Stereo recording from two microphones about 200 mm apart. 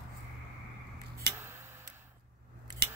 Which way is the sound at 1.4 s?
10° right (ahead or behind).